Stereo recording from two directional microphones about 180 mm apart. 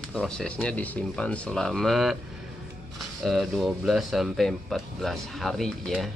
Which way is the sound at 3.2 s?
Centre (ahead or behind).